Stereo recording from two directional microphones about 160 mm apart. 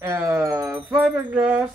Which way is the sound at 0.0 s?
15° right (ahead or behind).